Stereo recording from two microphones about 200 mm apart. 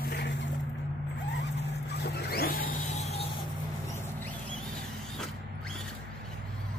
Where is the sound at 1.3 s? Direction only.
60° left (ahead or behind); by 3.4 s 30° left (ahead or behind).